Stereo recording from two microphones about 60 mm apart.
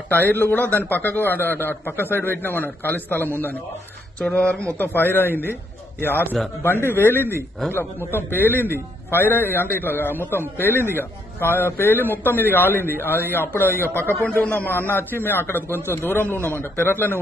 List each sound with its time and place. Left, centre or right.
0.1 s a man's voice: left
4.3 s speech: centre
4.7 s a man's voice: left